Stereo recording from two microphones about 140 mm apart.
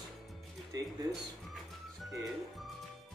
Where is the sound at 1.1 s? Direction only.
Centre (ahead or behind).